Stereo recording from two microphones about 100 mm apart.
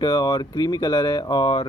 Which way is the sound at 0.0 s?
45° left (ahead or behind).